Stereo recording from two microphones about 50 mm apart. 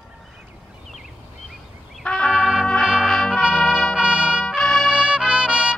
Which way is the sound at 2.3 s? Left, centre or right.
Centre.